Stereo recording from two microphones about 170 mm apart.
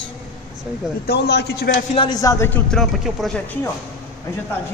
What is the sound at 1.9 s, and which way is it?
Speech, 25° left (ahead or behind).